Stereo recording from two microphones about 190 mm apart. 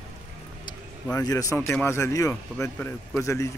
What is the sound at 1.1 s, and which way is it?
Speech, 15° left (ahead or behind).